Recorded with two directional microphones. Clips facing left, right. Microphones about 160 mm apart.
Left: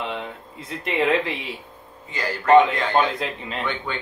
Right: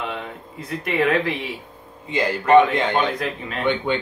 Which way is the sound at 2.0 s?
20° right (ahead or behind).